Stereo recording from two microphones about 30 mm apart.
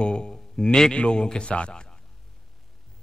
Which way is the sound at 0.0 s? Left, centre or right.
Left.